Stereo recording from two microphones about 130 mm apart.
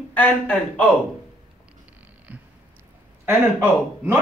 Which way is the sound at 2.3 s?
15° right (ahead or behind).